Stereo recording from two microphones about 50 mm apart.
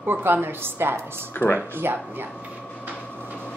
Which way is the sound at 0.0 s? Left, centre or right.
Right.